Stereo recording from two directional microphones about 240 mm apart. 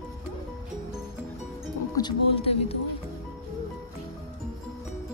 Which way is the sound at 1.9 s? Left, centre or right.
Left.